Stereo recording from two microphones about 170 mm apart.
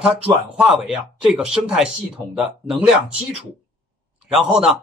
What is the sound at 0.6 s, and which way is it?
Speech, 5° right (ahead or behind).